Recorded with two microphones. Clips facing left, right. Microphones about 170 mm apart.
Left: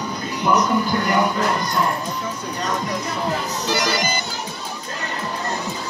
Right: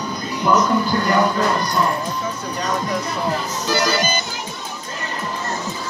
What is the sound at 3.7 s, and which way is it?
Music, 15° left (ahead or behind).